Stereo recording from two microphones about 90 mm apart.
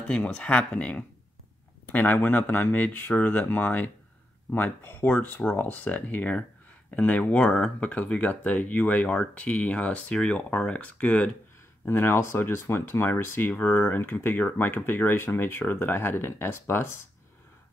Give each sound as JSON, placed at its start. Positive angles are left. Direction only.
{"t": 0.1, "sound": "speech", "side_deg": 15}